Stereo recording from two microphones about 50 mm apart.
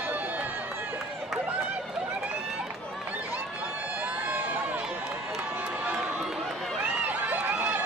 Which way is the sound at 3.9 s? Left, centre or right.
Right.